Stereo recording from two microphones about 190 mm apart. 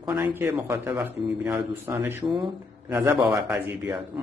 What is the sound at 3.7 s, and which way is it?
Speech, 10° right (ahead or behind).